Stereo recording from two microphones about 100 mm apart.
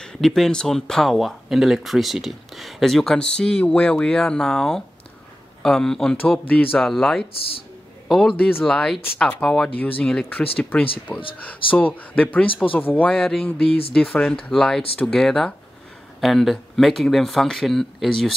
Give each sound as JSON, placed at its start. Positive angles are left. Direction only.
{"t": 0.0, "sound": "speech", "side_deg": 5}
{"t": 6.1, "sound": "speech", "side_deg": 15}
{"t": 6.8, "sound": "speech", "side_deg": 5}
{"t": 13.1, "sound": "speech", "side_deg": 0}
{"t": 13.7, "sound": "speech", "side_deg": 70}
{"t": 13.9, "sound": "speech", "side_deg": 10}